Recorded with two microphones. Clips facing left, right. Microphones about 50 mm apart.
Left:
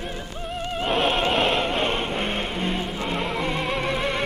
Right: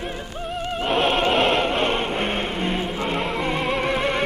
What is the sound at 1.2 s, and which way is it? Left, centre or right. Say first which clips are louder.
Music: right 3 dB; centre.